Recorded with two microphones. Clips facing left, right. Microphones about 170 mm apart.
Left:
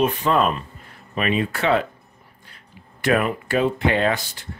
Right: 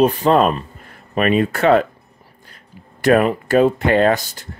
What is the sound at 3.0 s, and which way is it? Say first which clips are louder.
Speech: right 6 dB; 40° right (ahead or behind).